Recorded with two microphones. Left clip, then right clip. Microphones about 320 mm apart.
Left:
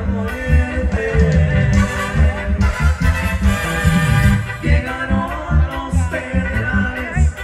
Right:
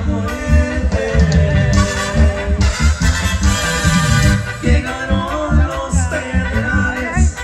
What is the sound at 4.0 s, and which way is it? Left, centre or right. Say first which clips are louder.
Music: right 2 dB; centre.